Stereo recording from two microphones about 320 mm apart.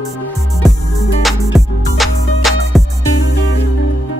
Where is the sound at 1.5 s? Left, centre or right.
Centre.